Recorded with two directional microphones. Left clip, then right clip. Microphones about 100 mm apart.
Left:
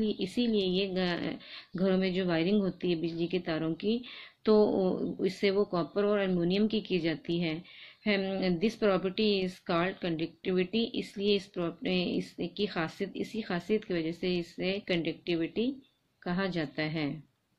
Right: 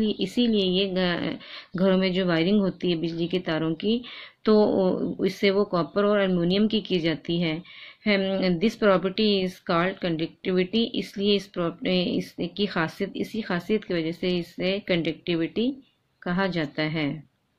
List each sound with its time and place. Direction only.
0.0 s a woman's voice: 25° right (ahead or behind)